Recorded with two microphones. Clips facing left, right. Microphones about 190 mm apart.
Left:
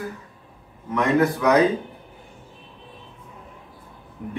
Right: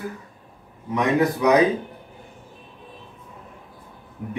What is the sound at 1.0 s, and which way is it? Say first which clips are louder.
Speech: even; 20° right (ahead or behind).